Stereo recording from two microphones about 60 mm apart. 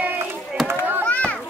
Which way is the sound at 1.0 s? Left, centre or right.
Left.